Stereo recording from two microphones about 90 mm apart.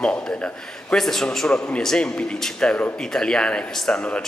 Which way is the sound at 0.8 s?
5° left (ahead or behind).